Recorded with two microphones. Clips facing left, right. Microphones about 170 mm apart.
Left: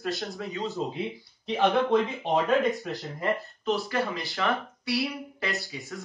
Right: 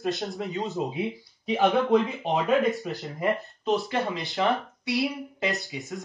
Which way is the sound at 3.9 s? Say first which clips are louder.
Right 1 dB; 20° right (ahead or behind).